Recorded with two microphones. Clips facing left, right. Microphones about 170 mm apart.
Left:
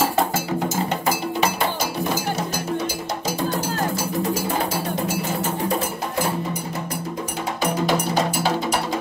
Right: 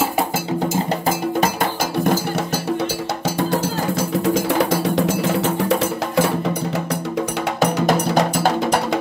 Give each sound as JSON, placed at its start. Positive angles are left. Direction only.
{"t": 4.5, "sound": "music", "side_deg": -80}
{"t": 7.8, "sound": "music", "side_deg": -45}